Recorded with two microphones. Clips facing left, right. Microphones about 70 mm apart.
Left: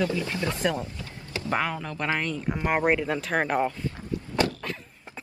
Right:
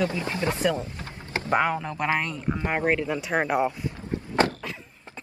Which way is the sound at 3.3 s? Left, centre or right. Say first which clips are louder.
Right 2 dB; centre.